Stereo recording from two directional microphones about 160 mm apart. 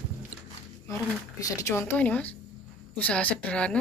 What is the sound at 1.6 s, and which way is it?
A woman's voice, 15° left (ahead or behind).